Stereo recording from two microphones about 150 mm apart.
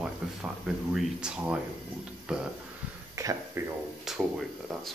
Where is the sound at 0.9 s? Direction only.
5° right (ahead or behind).